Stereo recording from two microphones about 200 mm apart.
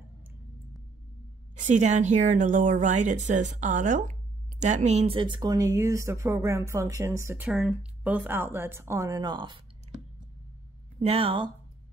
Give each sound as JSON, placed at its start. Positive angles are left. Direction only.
{"t": 1.6, "sound": "speech", "side_deg": -35}
{"t": 11.0, "sound": "speech", "side_deg": -30}